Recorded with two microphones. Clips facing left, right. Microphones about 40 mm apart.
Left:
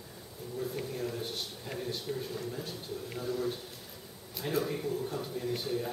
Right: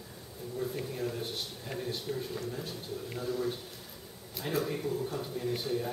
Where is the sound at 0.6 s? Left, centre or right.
Centre.